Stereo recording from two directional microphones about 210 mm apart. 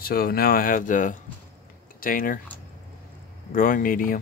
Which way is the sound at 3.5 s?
40° left (ahead or behind).